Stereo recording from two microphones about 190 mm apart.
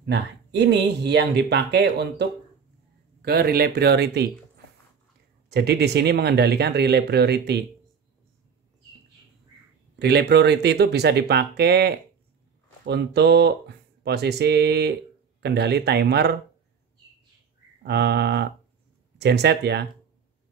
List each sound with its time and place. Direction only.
0.0 s speech: 65° right (ahead or behind)
5.5 s speech: 60° right (ahead or behind)
9.9 s speech: 60° right (ahead or behind)
17.8 s speech: 60° right (ahead or behind)